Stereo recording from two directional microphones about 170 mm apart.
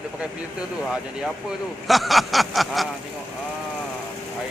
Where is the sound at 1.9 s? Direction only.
Centre (ahead or behind).